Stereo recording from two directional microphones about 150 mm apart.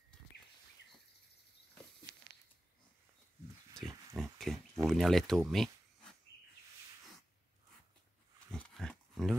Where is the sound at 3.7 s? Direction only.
25° right (ahead or behind).